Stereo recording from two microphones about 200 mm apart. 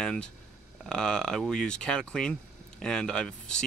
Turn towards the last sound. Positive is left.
turn(degrees=5)  # may be behind; listen again after turning